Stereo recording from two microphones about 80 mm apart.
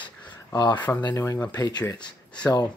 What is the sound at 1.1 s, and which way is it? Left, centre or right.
Speech, left.